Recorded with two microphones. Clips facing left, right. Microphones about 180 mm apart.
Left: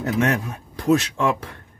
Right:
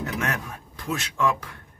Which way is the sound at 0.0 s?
35° left (ahead or behind).